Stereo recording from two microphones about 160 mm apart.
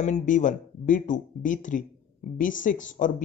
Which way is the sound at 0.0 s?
50° left (ahead or behind).